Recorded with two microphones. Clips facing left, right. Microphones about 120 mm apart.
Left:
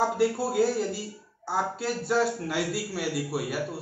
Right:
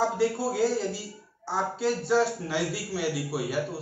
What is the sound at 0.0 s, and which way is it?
A man's voice, 5° left (ahead or behind).